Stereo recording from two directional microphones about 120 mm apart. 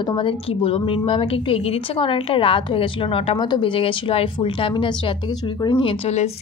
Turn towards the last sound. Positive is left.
turn(degrees=45)  # may be behind; listen again after turning